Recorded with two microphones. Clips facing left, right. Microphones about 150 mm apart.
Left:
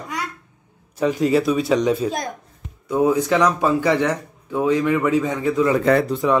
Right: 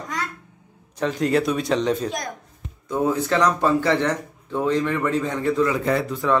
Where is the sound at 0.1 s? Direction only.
10° left (ahead or behind).